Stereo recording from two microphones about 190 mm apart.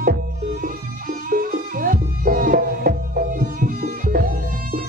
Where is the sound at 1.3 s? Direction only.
45° right (ahead or behind).